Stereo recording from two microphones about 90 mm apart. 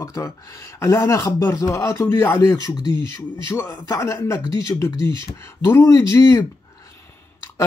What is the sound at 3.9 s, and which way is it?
A man's voice, 35° left (ahead or behind).